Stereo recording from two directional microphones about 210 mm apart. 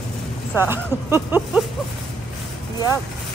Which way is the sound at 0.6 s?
10° right (ahead or behind).